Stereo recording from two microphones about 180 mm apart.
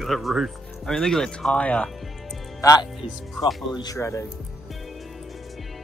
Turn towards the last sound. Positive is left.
turn(degrees=15)  # may be behind; listen again after turning